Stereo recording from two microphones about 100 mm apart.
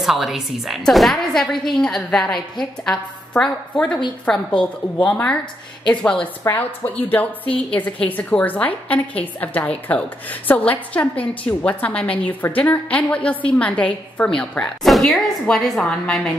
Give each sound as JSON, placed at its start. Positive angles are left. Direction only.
{"t": 0.0, "sound": "a woman's voice", "side_deg": -5}